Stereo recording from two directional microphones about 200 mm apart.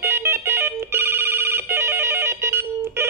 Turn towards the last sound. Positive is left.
turn(degrees=-10)  # may be behind; listen again after turning